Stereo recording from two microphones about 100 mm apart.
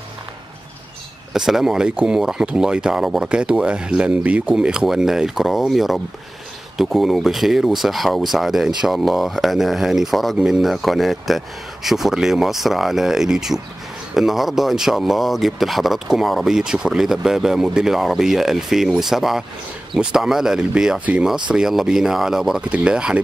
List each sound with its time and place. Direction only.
1.3 s speech: 5° right (ahead or behind)